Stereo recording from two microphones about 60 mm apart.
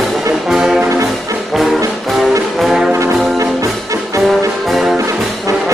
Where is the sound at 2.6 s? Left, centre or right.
Centre.